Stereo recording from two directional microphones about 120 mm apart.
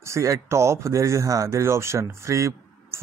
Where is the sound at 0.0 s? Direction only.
25° right (ahead or behind).